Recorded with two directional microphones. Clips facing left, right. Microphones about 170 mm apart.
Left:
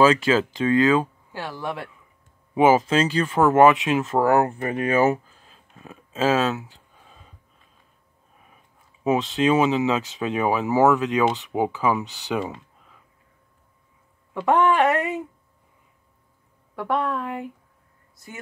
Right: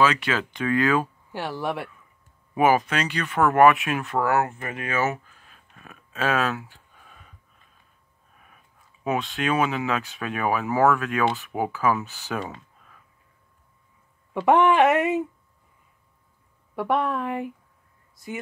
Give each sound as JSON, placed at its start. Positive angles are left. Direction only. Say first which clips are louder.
{"t": 0.0, "sound": "speech", "louder": "left 5 dB", "side_deg": 30}
{"t": 1.3, "sound": "a woman's voice", "louder": "right 3 dB", "side_deg": -15}
{"t": 2.5, "sound": "speech", "louder": "left 3 dB", "side_deg": 20}
{"t": 9.0, "sound": "speech", "louder": "left 5 dB", "side_deg": 20}
{"t": 14.3, "sound": "speech", "louder": "right 1 dB", "side_deg": -15}
{"t": 16.7, "sound": "a woman's voice", "louder": "right 1 dB", "side_deg": -15}